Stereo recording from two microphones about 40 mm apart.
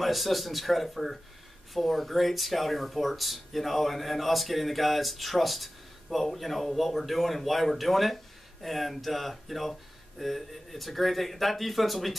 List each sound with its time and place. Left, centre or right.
0.0 s speech: centre